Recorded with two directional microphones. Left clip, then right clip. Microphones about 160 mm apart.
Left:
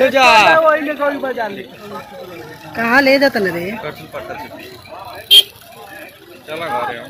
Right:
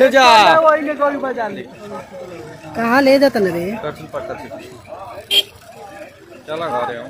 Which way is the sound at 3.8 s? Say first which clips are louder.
Right 1 dB; 35° right (ahead or behind).